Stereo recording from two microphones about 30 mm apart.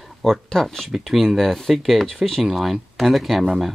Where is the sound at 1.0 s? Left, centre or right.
Centre.